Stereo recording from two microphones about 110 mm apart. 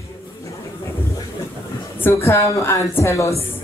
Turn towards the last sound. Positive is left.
turn(degrees=25)  # may be behind; listen again after turning